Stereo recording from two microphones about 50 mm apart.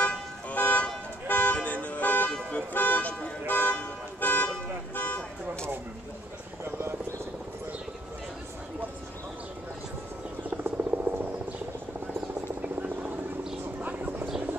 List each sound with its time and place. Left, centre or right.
0.0 s toot: left
1.3 s car alarm: left
2.7 s vehicle: left
3.4 s toot: left
4.2 s car: left
4.9 s vehicle: left
6.6 s helicopter: right
10.6 s helicopter: right
12.6 s helicopter: right
13.7 s vehicle: right